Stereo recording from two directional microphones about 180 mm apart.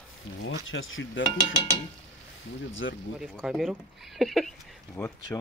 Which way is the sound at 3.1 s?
Centre (ahead or behind).